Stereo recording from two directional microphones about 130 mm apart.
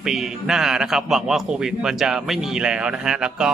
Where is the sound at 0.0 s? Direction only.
5° right (ahead or behind).